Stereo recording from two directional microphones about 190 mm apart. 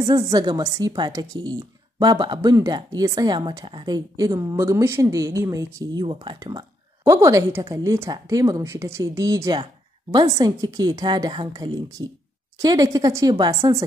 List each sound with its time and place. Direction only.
0.1 s a woman's voice: 20° right (ahead or behind)